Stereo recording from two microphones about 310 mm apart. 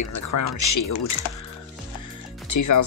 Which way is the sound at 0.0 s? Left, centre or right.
Left.